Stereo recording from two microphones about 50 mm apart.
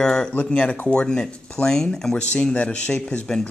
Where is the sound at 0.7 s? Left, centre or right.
Left.